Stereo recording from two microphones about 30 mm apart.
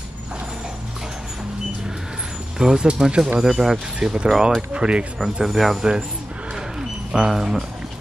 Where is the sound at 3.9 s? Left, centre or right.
Right.